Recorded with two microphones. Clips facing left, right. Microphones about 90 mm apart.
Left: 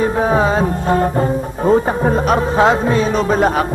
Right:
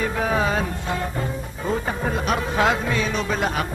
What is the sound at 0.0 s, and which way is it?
Music, 35° left (ahead or behind).